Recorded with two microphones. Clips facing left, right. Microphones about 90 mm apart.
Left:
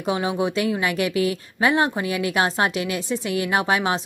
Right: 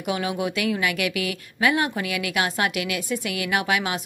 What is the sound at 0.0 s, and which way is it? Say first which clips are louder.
A woman's voice: left 3 dB; 30° left (ahead or behind).